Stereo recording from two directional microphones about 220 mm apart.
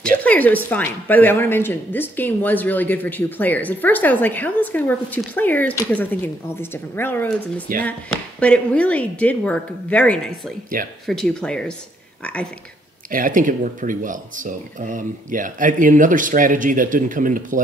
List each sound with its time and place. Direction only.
0.2 s speech: 5° left (ahead or behind)
10.8 s speech: 40° right (ahead or behind)
11.1 s speech: centre (ahead or behind)
13.1 s speech: 40° right (ahead or behind)